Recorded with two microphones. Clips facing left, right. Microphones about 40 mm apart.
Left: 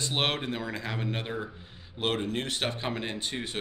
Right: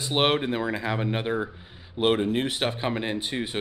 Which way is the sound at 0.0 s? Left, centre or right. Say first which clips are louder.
Right 6 dB; centre.